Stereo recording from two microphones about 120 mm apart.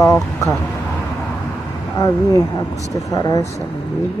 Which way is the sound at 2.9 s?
30° left (ahead or behind).